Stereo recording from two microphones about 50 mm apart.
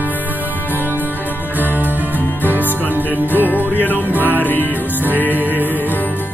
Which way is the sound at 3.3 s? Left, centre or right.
Left.